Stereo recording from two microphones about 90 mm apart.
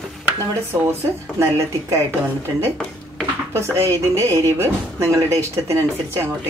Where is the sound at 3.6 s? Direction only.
30° right (ahead or behind).